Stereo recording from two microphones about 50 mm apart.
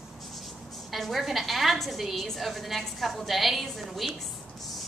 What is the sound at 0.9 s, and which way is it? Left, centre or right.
A woman's voice, centre.